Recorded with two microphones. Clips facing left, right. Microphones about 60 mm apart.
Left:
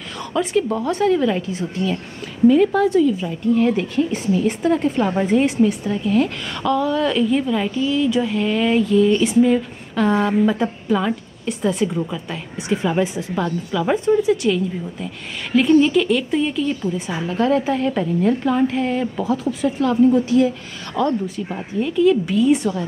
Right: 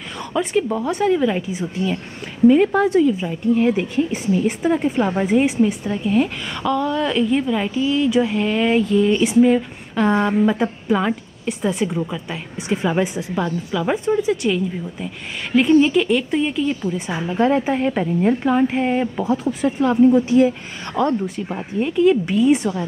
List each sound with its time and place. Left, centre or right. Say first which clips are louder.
0.2 s a woman's voice: even; centre
2.4 s a woman's voice: even; right; by 12.4 s centre
12.6 s a woman's voice: even; centre
17.3 s a woman's voice: right 1 dB; right
22.3 s a woman's voice: even; centre